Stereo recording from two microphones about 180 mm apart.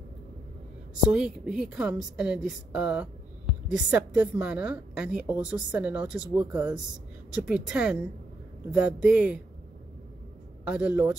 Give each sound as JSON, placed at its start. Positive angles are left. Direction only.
{"t": 1.0, "sound": "a woman's voice", "side_deg": -5}
{"t": 10.6, "sound": "a woman's voice", "side_deg": -5}